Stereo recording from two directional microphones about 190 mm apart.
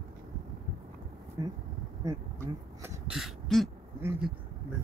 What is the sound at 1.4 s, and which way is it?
Speech, 20° right (ahead or behind).